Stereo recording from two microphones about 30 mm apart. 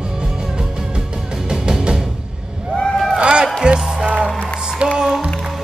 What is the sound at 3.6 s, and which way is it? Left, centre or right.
Music, right.